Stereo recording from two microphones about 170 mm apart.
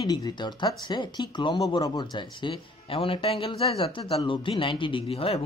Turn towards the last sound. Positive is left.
turn(degrees=35)  # may be behind; listen again after turning